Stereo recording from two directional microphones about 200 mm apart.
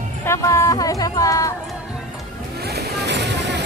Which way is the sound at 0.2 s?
15° left (ahead or behind).